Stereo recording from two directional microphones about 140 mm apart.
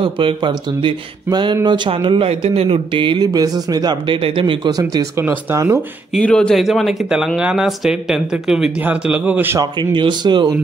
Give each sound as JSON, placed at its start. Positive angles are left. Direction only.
{"t": 0.0, "sound": "speech", "side_deg": -40}
{"t": 4.9, "sound": "speech", "side_deg": -15}
{"t": 6.1, "sound": "speech", "side_deg": 5}
{"t": 9.6, "sound": "speech", "side_deg": -35}